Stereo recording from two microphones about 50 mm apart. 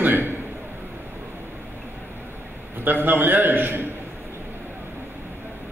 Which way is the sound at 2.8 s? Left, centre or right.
Right.